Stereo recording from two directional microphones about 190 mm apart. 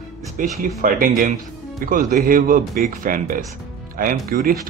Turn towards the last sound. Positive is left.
turn(degrees=-50)  # may be behind; listen again after turning